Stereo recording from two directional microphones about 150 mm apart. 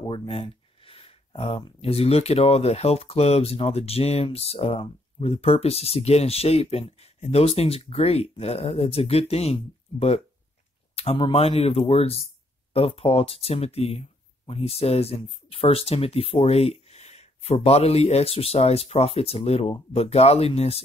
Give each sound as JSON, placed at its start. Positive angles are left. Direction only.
{"t": 0.1, "sound": "speech", "side_deg": 35}